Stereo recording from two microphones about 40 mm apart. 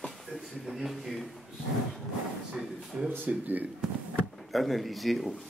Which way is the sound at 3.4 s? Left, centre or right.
Right.